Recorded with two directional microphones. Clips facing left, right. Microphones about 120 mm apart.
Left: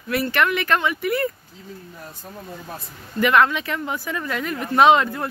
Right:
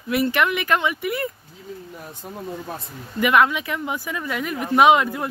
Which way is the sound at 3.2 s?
10° right (ahead or behind).